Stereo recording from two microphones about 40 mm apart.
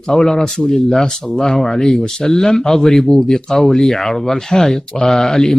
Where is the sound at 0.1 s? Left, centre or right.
Centre.